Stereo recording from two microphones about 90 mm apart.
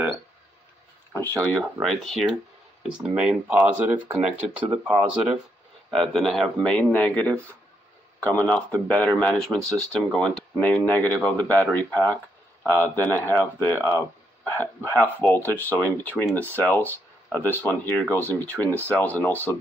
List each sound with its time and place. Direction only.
1.1 s speech: 15° left (ahead or behind)
1.6 s speech: centre (ahead or behind)
2.8 s speech: 10° right (ahead or behind); by 10.8 s 5° left (ahead or behind)
10.9 s speech: 20° left (ahead or behind)